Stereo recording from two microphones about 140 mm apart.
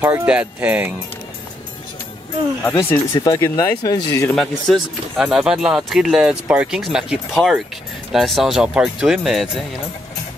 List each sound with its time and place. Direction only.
0.0 s speech: 15° right (ahead or behind)
2.8 s speech: 20° left (ahead or behind)
4.4 s speech: centre (ahead or behind)